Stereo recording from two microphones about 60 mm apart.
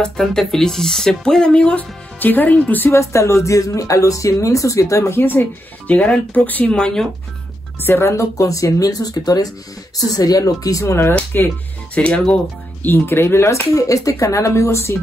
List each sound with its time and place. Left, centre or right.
0.0 s speech: centre
2.1 s speech: left
2.9 s speech: left
5.2 s speech: left
6.7 s speech: centre
7.8 s speech: left
12.0 s speech: left
12.8 s speech: left